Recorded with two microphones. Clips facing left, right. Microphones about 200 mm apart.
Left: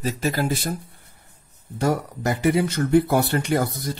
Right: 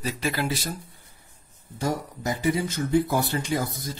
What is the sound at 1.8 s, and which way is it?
Speech, 65° left (ahead or behind).